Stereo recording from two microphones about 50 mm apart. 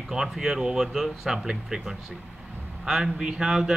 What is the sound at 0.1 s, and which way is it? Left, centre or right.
Speech, centre.